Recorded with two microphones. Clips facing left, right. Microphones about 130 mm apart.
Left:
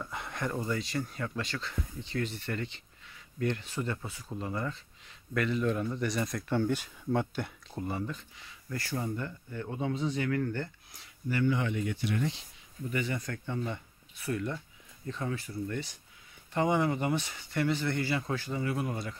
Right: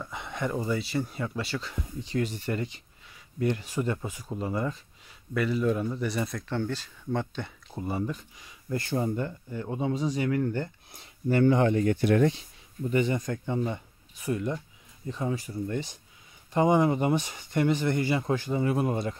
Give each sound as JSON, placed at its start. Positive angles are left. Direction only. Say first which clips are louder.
{"t": 0.0, "sound": "speech", "louder": "right 3 dB", "side_deg": 0}
{"t": 6.5, "sound": "speech", "louder": "left 5 dB", "side_deg": 10}
{"t": 7.7, "sound": "speech", "louder": "right 4 dB", "side_deg": -10}
{"t": 8.6, "sound": "speech", "louder": "right 6 dB", "side_deg": -25}
{"t": 11.4, "sound": "speech", "louder": "right 8 dB", "side_deg": -40}
{"t": 12.9, "sound": "speech", "louder": "right 7 dB", "side_deg": -25}